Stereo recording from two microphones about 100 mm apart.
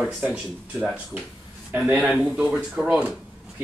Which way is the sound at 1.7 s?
10° right (ahead or behind).